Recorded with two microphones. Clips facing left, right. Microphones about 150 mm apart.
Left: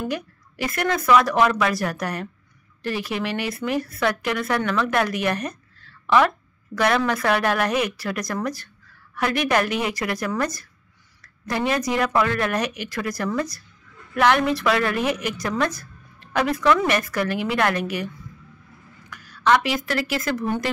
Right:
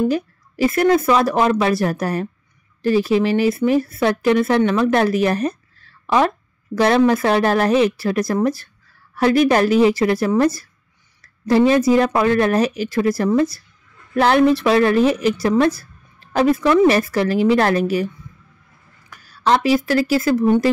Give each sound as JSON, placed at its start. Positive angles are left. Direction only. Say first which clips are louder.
{"t": 0.1, "sound": "speech", "louder": "right 7 dB", "side_deg": -30}
{"t": 19.0, "sound": "speech", "louder": "right 2 dB", "side_deg": -30}